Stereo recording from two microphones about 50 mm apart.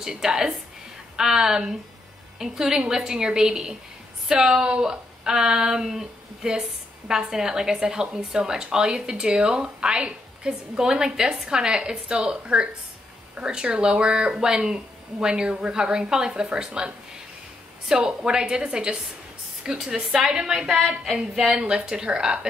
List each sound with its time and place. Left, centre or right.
0.0 s a woman's voice: centre